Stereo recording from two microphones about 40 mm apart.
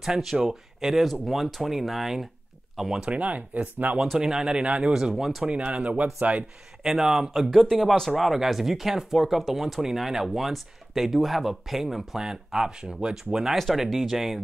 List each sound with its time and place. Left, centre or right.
0.0 s speech: centre
3.1 s speech: right
4.2 s speech: centre
5.1 s speech: centre
5.6 s speech: right
6.8 s speech: centre
7.7 s speech: centre
8.2 s speech: centre